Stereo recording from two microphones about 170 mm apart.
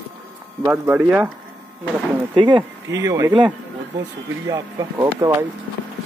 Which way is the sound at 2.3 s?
25° right (ahead or behind).